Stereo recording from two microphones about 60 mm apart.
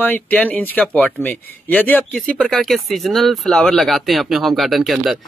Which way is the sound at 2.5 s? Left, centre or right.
Centre.